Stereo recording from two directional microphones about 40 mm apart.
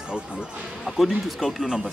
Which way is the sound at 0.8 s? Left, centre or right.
Centre.